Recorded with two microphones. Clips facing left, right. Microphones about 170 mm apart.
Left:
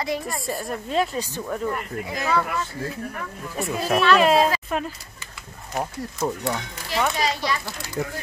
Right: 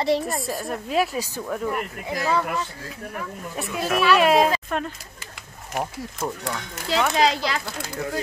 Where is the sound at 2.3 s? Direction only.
20° right (ahead or behind).